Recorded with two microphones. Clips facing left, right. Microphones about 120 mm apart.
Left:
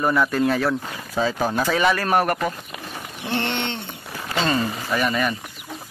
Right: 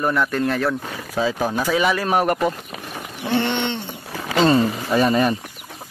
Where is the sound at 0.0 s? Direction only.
5° left (ahead or behind); by 2.5 s 15° right (ahead or behind).